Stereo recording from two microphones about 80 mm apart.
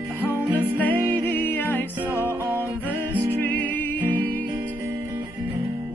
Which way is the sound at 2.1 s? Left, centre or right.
Right.